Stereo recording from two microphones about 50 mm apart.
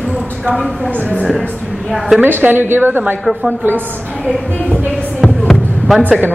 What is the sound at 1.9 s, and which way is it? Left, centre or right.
Speech, centre.